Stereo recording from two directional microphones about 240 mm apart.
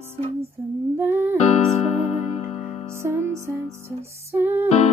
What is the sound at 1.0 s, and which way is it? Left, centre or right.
Music, centre.